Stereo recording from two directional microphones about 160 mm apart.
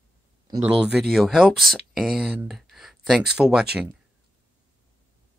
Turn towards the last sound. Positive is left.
turn(degrees=-5)  # may be behind; listen again after turning